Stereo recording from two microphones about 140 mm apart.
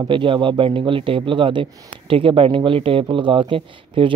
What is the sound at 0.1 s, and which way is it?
Speech, 35° right (ahead or behind).